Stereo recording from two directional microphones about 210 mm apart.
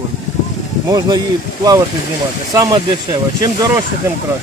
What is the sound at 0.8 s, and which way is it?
Speech, 15° right (ahead or behind).